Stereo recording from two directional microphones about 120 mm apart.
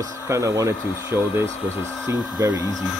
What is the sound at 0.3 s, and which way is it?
Speech, 25° right (ahead or behind).